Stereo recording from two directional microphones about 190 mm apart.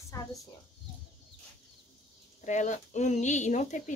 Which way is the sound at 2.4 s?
40° left (ahead or behind).